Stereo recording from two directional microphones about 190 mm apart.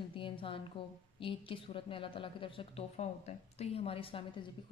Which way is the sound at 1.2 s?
25° left (ahead or behind).